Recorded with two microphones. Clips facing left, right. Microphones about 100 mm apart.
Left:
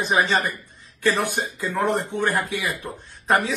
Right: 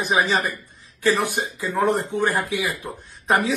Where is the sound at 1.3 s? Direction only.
15° right (ahead or behind).